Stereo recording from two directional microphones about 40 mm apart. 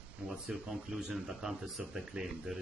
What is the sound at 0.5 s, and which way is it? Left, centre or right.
Speech, centre.